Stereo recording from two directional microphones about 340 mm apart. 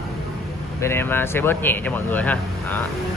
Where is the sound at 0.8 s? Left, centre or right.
Centre.